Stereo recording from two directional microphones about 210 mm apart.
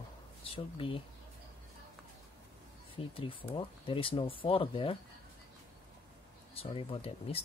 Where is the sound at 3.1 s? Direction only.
25° left (ahead or behind).